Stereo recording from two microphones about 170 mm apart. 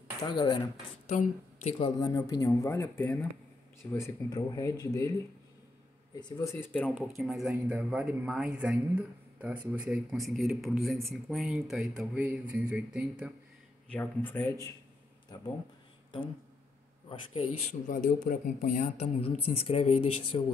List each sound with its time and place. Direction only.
0.2 s speech: 25° left (ahead or behind)
1.0 s speech: 40° left (ahead or behind)
2.0 s speech: 20° left (ahead or behind)
3.9 s speech: 20° left (ahead or behind)
6.1 s speech: 25° left (ahead or behind)
7.2 s speech: centre (ahead or behind)
13.9 s speech: 10° left (ahead or behind)
15.3 s speech: 25° left (ahead or behind)
17.1 s speech: 35° left (ahead or behind)